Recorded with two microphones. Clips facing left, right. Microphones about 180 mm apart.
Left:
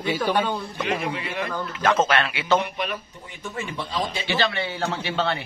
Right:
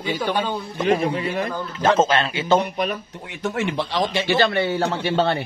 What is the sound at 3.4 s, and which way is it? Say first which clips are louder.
Speech: right 8 dB; 85° right.